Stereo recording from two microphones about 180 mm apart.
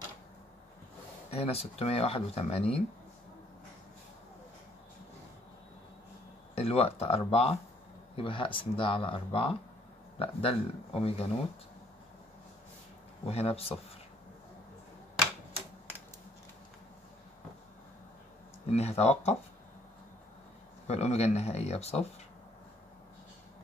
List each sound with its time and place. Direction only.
1.3 s speech: 35° left (ahead or behind)
6.5 s speech: 35° left (ahead or behind)
13.3 s speech: 35° left (ahead or behind)
18.7 s speech: 35° left (ahead or behind)
20.8 s speech: 35° left (ahead or behind)